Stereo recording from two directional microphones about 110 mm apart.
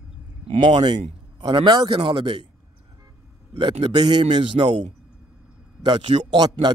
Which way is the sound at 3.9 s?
40° right (ahead or behind).